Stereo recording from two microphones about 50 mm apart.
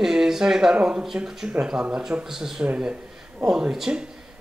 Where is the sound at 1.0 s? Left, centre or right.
Centre.